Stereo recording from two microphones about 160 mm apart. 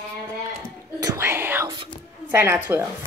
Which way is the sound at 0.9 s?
20° right (ahead or behind).